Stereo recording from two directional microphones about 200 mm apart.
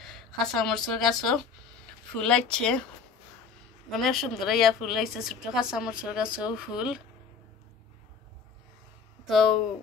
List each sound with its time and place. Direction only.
0.0 s a woman's voice: centre (ahead or behind)
3.9 s a woman's voice: centre (ahead or behind)
9.3 s a woman's voice: centre (ahead or behind)